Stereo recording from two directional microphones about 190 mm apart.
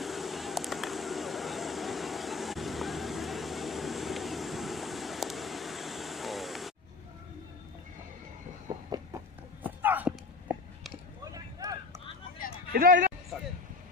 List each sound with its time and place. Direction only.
0.0 s vehicle: centre (ahead or behind)
8.6 s vehicle: 20° right (ahead or behind)
9.6 s a sound: 10° right (ahead or behind)
11.6 s vehicle: 15° right (ahead or behind)
12.7 s speech: 45° right (ahead or behind)